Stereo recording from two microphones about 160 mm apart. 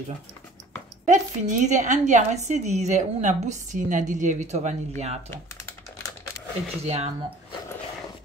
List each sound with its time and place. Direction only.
1.0 s a woman's voice: 50° right (ahead or behind)
6.8 s speech: 40° right (ahead or behind)